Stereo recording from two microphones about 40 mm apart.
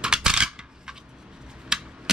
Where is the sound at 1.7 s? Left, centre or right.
Centre.